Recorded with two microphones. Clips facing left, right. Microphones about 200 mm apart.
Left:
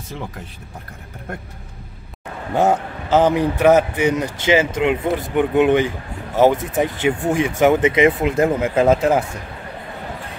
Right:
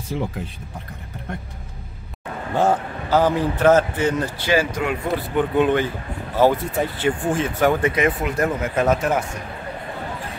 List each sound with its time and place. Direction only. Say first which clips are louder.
2.5 s a man's voice: left 2 dB; 20° left (ahead or behind)